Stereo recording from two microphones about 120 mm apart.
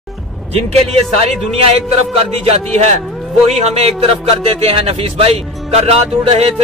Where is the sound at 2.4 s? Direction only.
60° right (ahead or behind).